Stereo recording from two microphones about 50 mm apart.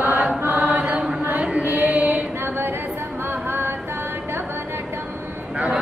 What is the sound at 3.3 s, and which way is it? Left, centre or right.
Music, right.